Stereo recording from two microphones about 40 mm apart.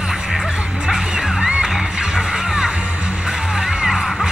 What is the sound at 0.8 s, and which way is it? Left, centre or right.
Music, centre.